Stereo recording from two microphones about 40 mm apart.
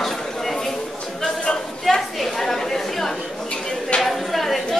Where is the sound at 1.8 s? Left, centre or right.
Centre.